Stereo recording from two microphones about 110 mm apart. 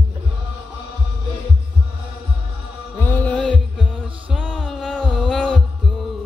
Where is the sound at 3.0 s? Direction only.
15° left (ahead or behind).